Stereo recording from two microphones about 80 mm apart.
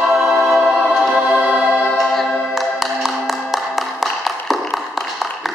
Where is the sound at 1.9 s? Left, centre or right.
Centre.